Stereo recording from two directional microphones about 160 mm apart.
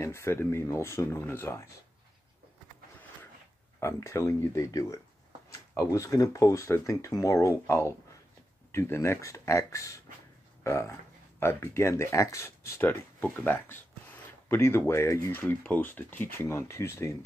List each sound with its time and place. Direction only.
0.0 s speech: 15° left (ahead or behind)
3.8 s speech: 15° left (ahead or behind)